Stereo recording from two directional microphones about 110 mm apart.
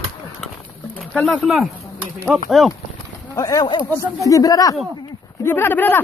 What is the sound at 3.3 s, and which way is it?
Speech, 30° left (ahead or behind).